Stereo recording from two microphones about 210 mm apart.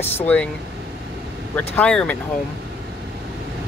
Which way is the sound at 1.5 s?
5° left (ahead or behind).